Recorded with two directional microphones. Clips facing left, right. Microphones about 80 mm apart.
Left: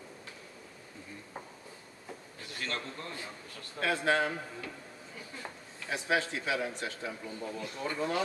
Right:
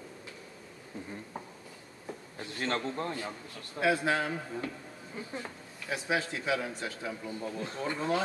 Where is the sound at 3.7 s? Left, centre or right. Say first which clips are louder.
Right 1 dB; centre.